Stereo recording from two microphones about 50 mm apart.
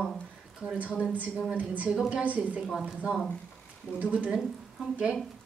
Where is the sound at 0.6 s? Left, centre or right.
Centre.